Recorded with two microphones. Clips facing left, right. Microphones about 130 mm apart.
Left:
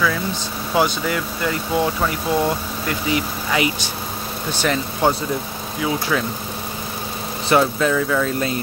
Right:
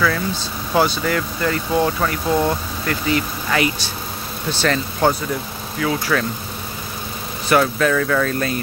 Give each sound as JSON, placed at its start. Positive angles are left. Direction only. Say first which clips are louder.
{"t": 0.7, "sound": "speech", "louder": "right 1 dB", "side_deg": 10}
{"t": 7.4, "sound": "speech", "louder": "even", "side_deg": 20}